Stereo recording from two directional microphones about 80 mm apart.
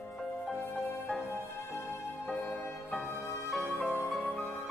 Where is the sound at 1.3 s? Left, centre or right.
Left.